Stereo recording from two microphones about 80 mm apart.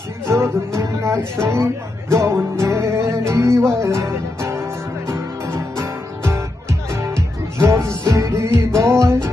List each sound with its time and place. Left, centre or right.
0.3 s speech: right
2.3 s music: right